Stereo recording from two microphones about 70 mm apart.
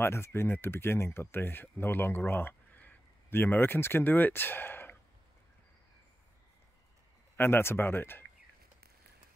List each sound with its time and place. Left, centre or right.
0.0 s speech: left
7.3 s speech: left